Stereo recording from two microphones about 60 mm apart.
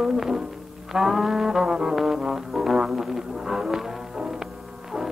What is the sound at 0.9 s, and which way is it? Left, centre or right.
Music, centre.